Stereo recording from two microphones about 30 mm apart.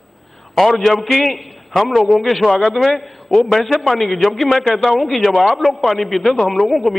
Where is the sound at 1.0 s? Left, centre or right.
Centre.